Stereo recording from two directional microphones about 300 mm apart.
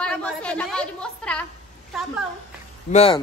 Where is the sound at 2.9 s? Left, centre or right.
Centre.